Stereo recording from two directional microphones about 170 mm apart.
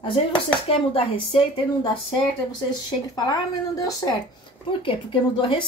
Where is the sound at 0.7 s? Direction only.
35° left (ahead or behind).